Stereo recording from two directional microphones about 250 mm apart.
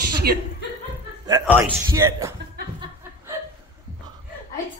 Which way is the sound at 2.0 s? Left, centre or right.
Centre.